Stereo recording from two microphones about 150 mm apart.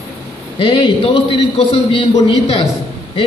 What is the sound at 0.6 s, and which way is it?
A man's voice, 35° left (ahead or behind).